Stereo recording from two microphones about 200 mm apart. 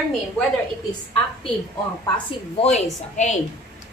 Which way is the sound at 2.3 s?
30° left (ahead or behind).